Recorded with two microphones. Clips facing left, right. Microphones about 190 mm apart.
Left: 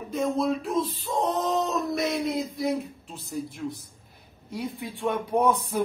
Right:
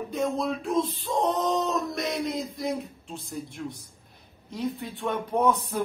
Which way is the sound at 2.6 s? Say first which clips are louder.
Left 3 dB; centre (ahead or behind).